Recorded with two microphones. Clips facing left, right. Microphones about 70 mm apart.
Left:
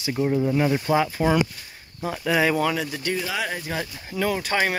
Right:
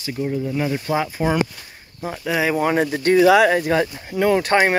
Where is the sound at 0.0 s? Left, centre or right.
Centre.